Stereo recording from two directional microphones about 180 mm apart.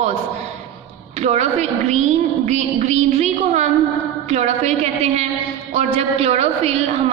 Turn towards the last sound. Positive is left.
turn(degrees=-35)  # may be behind; listen again after turning